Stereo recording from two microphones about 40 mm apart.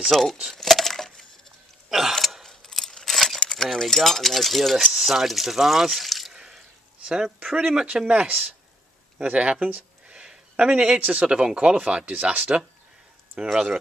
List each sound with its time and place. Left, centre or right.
0.1 s speech: centre
0.6 s a sound: centre
1.9 s a sound: centre
2.4 s mechanisms: centre
3.1 s a sound: centre
3.4 s speech: centre
6.3 s drip: centre
7.5 s speech: right
11.0 s speech: right
11.2 s speech: right
12.1 s speech: right
13.4 s speech: centre